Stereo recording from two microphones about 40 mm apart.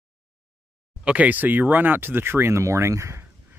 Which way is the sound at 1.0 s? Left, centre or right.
Right.